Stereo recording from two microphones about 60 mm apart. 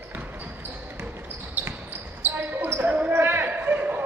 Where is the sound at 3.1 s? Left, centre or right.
Right.